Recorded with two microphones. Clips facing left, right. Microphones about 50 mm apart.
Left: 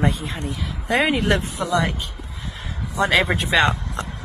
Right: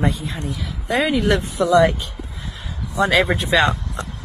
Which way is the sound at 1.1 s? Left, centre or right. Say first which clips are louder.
Right 2 dB; left.